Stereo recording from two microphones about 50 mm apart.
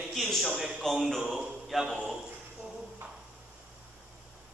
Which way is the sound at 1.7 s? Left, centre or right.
Centre.